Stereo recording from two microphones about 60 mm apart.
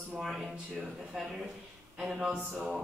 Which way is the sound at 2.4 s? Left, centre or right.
Right.